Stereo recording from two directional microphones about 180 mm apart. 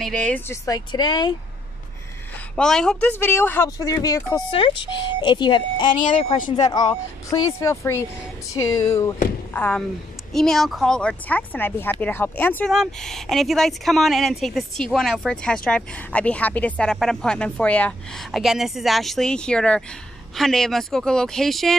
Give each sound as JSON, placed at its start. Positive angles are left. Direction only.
{"t": 0.0, "sound": "speech", "side_deg": 5}
{"t": 0.7, "sound": "speech", "side_deg": 25}
{"t": 2.5, "sound": "speech", "side_deg": 5}
{"t": 4.5, "sound": "speech", "side_deg": 30}
{"t": 6.1, "sound": "speech", "side_deg": 45}
{"t": 6.5, "sound": "speech", "side_deg": 20}
{"t": 9.5, "sound": "speech", "side_deg": 5}